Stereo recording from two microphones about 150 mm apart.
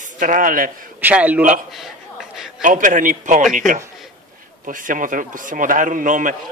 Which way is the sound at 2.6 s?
60° right (ahead or behind).